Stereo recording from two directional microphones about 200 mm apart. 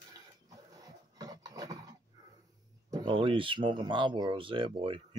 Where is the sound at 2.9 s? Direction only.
25° right (ahead or behind).